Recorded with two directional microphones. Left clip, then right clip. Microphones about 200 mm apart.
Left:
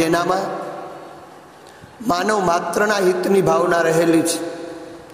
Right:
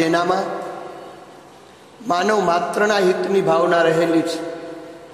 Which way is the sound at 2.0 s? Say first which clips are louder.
Even; 25° left (ahead or behind).